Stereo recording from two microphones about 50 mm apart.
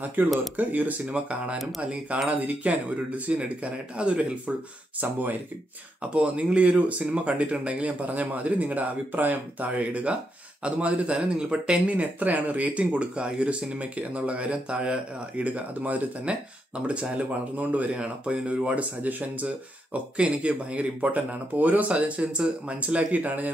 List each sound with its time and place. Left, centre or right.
0.0 s speech: right
5.0 s speech: right
6.1 s speech: right
11.1 s speech: centre
12.2 s speech: right
20.2 s speech: right